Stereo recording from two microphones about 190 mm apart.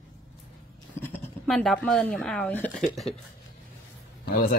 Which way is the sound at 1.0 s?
10° left (ahead or behind).